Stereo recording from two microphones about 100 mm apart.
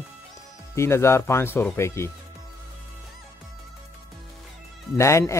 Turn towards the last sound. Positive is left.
turn(degrees=30)  # may be behind; listen again after turning